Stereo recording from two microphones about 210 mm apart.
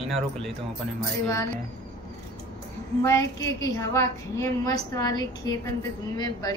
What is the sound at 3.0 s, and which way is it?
A woman's voice, 15° left (ahead or behind).